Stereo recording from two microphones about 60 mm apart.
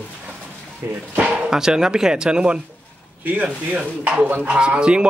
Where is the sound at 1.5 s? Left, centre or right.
Centre.